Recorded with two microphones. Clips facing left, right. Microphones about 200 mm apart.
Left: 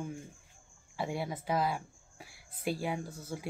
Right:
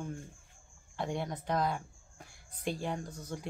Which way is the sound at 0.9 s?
5° left (ahead or behind).